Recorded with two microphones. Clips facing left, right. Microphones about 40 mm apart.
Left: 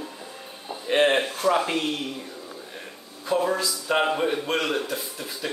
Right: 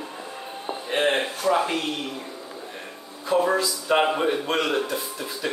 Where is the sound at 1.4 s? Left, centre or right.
Centre.